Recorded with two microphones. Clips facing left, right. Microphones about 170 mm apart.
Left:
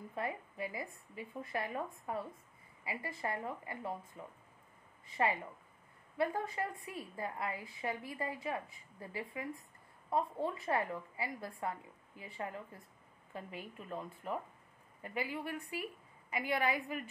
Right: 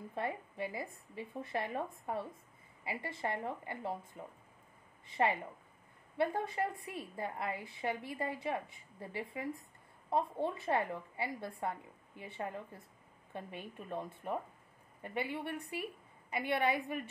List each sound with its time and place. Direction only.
0.1 s a woman's voice: 30° right (ahead or behind)